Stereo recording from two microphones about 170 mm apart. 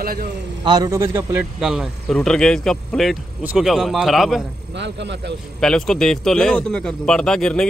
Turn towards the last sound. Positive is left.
turn(degrees=5)  # may be behind; listen again after turning